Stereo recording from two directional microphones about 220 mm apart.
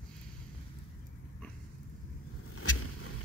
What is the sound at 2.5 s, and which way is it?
Vehicle, 75° left (ahead or behind).